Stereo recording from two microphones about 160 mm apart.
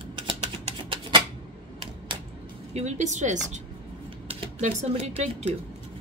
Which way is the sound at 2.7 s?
45° right (ahead or behind).